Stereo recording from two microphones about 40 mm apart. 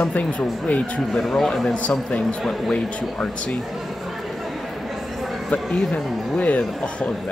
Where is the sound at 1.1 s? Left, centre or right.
Centre.